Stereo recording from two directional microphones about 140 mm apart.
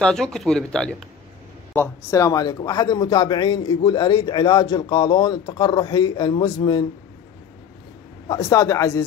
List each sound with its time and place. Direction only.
0.0 s speech: 5° left (ahead or behind)
1.7 s speech: 15° left (ahead or behind); by 6.9 s 35° left (ahead or behind)
8.3 s a man's voice: 25° left (ahead or behind)